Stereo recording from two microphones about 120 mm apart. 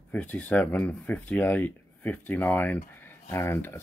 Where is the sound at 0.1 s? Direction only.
15° left (ahead or behind).